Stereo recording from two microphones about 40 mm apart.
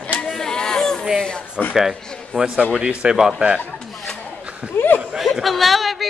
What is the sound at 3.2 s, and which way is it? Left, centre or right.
Speech, centre.